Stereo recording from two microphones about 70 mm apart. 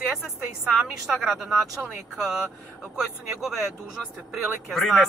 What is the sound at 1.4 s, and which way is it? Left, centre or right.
A woman's voice, centre.